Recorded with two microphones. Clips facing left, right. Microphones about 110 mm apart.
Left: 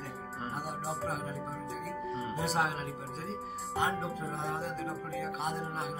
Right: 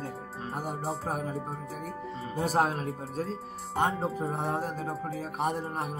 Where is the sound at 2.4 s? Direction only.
40° right (ahead or behind).